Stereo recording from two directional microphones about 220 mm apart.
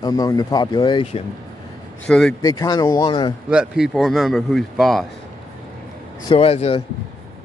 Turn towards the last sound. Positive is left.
turn(degrees=25)  # may be behind; listen again after turning